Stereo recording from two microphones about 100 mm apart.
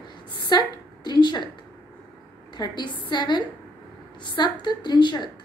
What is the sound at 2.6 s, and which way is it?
A woman's voice, 45° left (ahead or behind).